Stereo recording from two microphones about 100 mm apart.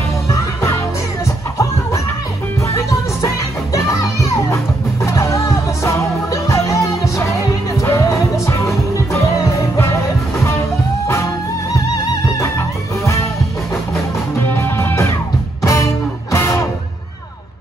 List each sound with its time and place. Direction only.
0.3 s music: 30° left (ahead or behind)
11.1 s music: 30° left (ahead or behind)
14.5 s music: 20° left (ahead or behind)